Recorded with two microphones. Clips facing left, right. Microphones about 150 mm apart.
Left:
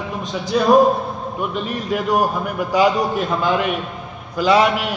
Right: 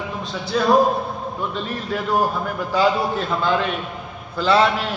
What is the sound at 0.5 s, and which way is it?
Speech, 15° left (ahead or behind).